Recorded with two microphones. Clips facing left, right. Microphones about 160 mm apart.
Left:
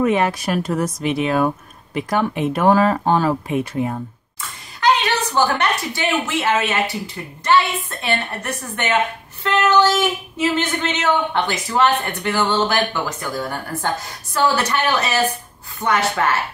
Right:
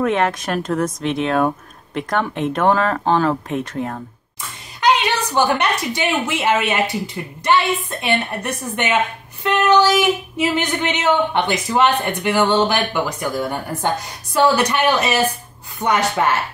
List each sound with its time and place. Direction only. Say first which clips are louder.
0.0 s speech: left 1 dB; 5° left (ahead or behind)
4.7 s a woman's voice: right 1 dB; 15° right (ahead or behind)
8.0 s a woman's voice: left 1 dB; 20° right (ahead or behind)